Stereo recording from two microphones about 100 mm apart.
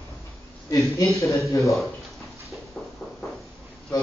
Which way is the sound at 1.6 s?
Centre (ahead or behind).